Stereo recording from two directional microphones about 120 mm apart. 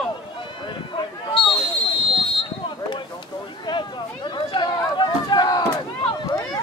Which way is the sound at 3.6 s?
40° left (ahead or behind).